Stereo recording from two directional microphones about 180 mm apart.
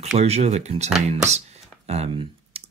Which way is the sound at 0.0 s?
35° right (ahead or behind).